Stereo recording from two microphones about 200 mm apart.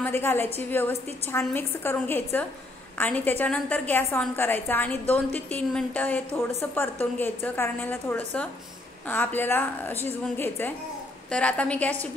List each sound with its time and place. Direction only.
0.0 s a woman's voice: 10° left (ahead or behind)